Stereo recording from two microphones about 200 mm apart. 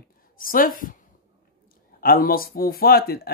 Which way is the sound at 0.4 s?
45° left (ahead or behind).